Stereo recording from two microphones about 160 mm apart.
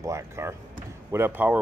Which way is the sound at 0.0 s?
20° right (ahead or behind).